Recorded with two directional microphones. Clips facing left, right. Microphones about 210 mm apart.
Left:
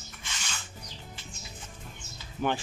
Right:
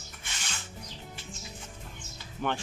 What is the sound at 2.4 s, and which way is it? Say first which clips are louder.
Speech: left 3 dB; 10° left (ahead or behind).